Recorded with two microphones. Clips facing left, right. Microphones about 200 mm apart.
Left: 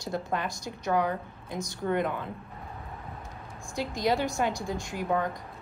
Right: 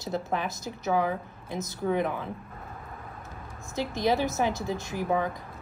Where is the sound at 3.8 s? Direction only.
20° right (ahead or behind).